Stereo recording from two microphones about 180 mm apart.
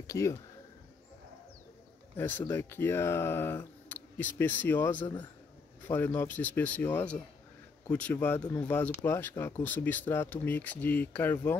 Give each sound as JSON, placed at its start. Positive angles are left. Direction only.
{"t": 0.0, "sound": "speech", "side_deg": 15}
{"t": 2.1, "sound": "speech", "side_deg": 10}